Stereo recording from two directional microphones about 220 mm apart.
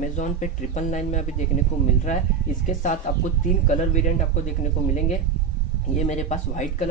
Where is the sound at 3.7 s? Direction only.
35° left (ahead or behind).